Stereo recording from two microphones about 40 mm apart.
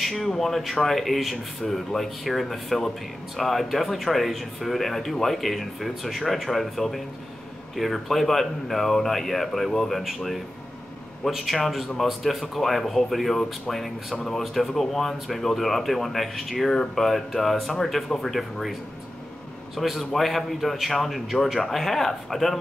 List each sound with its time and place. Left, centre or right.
0.0 s a man's voice: centre